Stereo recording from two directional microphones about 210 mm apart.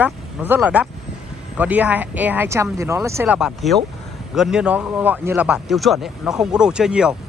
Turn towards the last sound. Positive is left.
turn(degrees=-5)  # may be behind; listen again after turning